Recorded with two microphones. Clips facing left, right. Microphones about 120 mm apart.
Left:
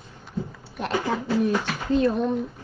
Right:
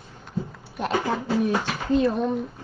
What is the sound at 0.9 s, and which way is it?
Speech, 20° right (ahead or behind).